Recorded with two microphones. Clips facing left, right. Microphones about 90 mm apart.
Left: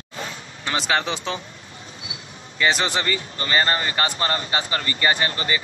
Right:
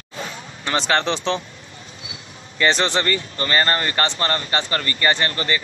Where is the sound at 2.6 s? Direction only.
5° left (ahead or behind).